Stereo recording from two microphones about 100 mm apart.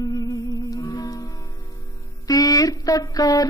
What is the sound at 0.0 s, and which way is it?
Music, 35° left (ahead or behind).